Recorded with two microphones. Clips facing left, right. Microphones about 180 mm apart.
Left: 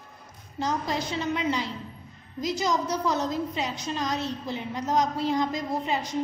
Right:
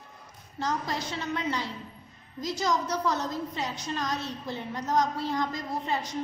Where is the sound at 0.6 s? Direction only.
15° left (ahead or behind).